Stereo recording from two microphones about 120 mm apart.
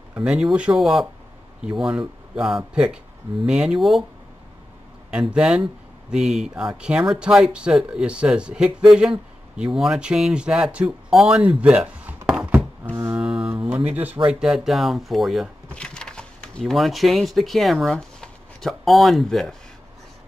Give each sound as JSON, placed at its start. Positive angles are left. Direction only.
{"t": 0.1, "sound": "speech", "side_deg": -5}
{"t": 5.3, "sound": "speech", "side_deg": -5}
{"t": 12.3, "sound": "a sound", "side_deg": -10}
{"t": 12.9, "sound": "music", "side_deg": -20}
{"t": 13.2, "sound": "speech", "side_deg": -10}